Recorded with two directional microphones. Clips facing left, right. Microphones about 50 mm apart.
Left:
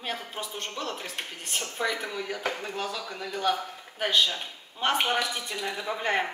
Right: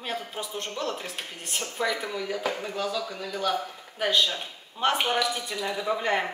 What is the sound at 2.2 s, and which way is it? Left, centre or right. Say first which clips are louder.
A man's voice: right 2 dB; left.